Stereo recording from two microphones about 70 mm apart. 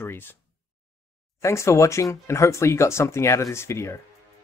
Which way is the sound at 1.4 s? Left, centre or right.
Left.